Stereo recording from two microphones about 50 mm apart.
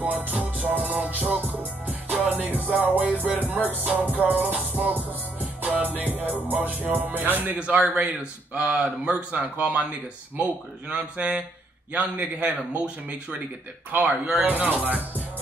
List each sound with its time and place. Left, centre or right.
0.0 s music: right
8.5 s a man's voice: right
13.9 s music: right